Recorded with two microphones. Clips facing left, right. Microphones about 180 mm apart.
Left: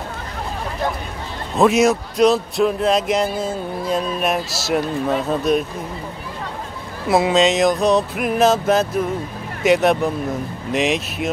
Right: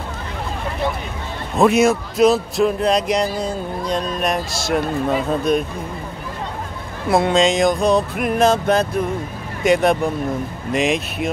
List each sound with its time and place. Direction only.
1.6 s speech: centre (ahead or behind)
7.1 s speech: 5° left (ahead or behind)